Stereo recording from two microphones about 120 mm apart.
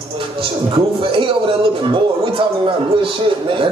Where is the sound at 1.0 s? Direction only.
45° right (ahead or behind).